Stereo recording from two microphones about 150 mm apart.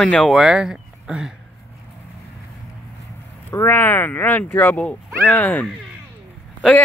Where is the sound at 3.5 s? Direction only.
15° left (ahead or behind).